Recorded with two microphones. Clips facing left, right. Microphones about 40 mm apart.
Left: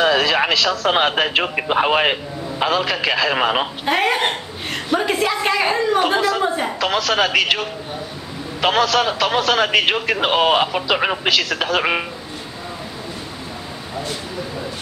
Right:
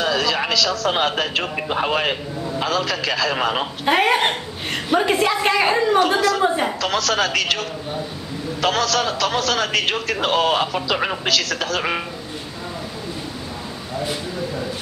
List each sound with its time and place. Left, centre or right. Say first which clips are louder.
0.0 s a sound: left 4 dB; left
0.8 s a man's voice: left 3 dB; left
3.8 s a woman's voice: right 3 dB; centre
5.9 s a man's voice: even; centre
6.4 s a woman's voice: right 1 dB; centre
6.8 s a man's voice: left 2 dB; centre